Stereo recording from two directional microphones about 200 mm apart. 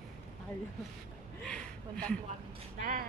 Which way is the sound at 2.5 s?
40° right (ahead or behind).